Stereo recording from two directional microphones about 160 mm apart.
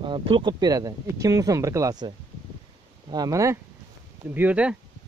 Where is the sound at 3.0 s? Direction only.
25° right (ahead or behind).